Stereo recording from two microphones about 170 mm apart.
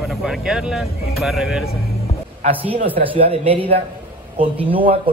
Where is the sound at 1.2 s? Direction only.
Centre (ahead or behind).